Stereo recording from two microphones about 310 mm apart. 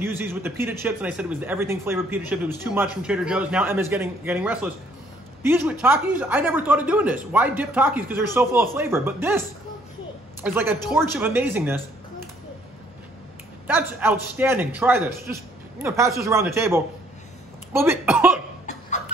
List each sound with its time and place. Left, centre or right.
0.0 s speech: centre
10.4 s speech: centre
13.7 s speech: centre
18.7 s cough: left